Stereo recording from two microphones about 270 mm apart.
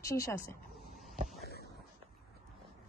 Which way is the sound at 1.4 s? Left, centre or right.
Left.